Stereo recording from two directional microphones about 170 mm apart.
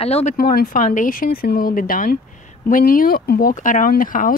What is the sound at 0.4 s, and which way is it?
Speech, 55° left (ahead or behind).